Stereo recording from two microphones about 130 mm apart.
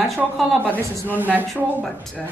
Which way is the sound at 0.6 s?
15° right (ahead or behind).